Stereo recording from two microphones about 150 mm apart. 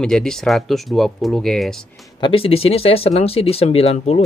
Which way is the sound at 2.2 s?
35° left (ahead or behind).